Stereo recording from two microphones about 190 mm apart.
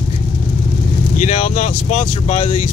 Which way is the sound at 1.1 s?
40° left (ahead or behind).